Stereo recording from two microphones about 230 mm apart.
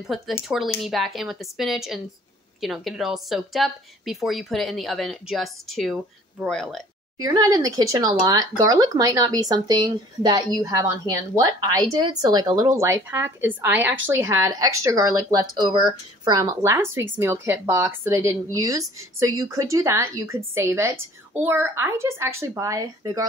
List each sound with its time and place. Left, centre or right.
0.0 s a woman's voice: centre
7.2 s speech: centre